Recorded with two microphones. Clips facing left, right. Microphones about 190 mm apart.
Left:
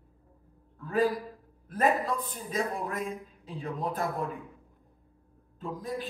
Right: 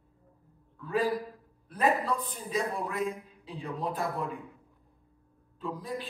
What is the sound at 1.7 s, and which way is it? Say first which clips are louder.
A man's voice: left 1 dB; 45° left (ahead or behind).